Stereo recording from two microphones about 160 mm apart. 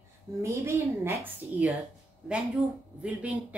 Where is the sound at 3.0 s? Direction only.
10° right (ahead or behind).